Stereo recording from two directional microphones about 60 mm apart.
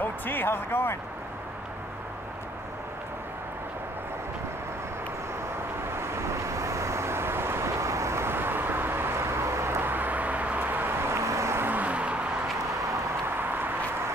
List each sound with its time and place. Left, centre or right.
0.0 s speech: left
5.9 s vehicle: right
11.6 s vehicle: right
13.4 s a sound: right